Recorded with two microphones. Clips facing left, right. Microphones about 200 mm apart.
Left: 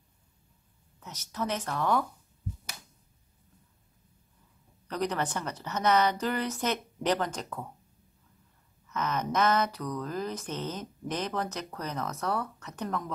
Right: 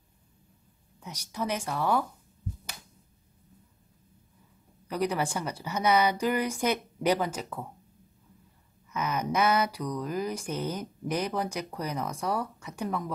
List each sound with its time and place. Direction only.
0.9 s speech: 10° right (ahead or behind)
4.8 s speech: 10° right (ahead or behind)
8.8 s speech: 10° right (ahead or behind)